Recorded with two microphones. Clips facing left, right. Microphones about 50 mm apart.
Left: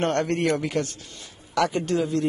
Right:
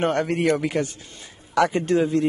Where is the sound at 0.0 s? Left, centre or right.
Centre.